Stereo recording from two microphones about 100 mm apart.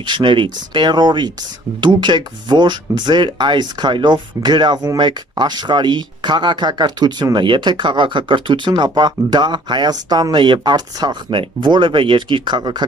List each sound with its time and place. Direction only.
0.0 s speech: 50° right (ahead or behind)